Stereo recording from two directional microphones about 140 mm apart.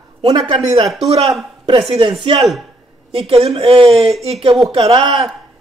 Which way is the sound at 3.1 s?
45° right (ahead or behind).